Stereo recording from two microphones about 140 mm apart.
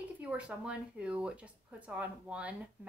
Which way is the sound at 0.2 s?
10° right (ahead or behind).